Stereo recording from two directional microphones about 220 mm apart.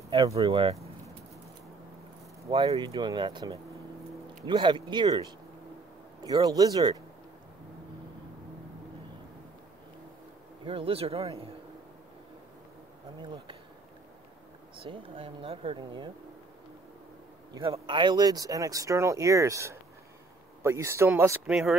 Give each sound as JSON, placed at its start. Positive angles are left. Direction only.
{"t": 0.1, "sound": "speech", "side_deg": -25}
{"t": 2.4, "sound": "speech", "side_deg": -20}
{"t": 6.2, "sound": "speech", "side_deg": -15}
{"t": 10.6, "sound": "speech", "side_deg": -25}
{"t": 14.9, "sound": "speech", "side_deg": -25}
{"t": 17.6, "sound": "speech", "side_deg": -25}